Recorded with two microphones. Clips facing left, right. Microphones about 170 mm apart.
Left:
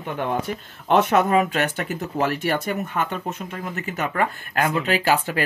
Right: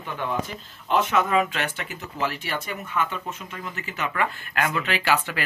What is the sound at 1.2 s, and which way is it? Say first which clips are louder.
Speech: left 4 dB; 40° left (ahead or behind).